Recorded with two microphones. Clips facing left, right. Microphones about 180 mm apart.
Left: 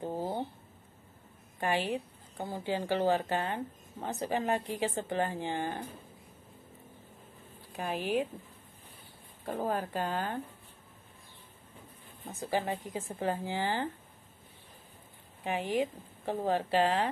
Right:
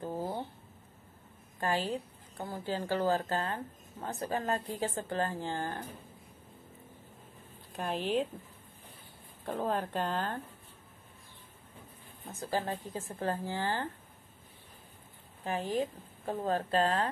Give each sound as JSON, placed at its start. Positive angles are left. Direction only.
{"t": 0.0, "sound": "a sound", "side_deg": 20}
{"t": 1.6, "sound": "speech", "side_deg": 15}
{"t": 7.7, "sound": "speech", "side_deg": 10}
{"t": 9.5, "sound": "speech", "side_deg": 5}
{"t": 12.3, "sound": "speech", "side_deg": 15}
{"t": 15.4, "sound": "speech", "side_deg": 15}